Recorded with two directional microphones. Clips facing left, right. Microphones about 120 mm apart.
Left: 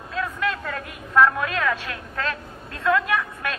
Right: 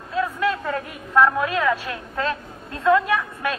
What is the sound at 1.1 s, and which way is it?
A woman's voice, 25° right (ahead or behind).